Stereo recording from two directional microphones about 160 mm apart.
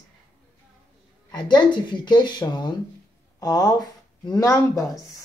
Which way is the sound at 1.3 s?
25° left (ahead or behind).